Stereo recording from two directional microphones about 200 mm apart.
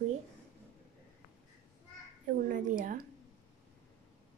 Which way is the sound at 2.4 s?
40° right (ahead or behind).